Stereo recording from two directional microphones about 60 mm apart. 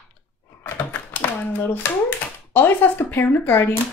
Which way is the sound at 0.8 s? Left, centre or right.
Left.